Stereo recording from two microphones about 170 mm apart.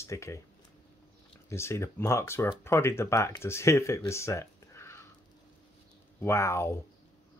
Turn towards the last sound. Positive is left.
turn(degrees=15)  # may be behind; listen again after turning